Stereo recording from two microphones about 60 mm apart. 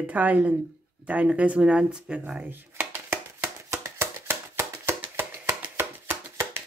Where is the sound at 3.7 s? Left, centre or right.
Right.